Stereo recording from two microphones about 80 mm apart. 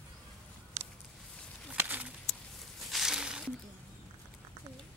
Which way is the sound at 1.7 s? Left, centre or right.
Right.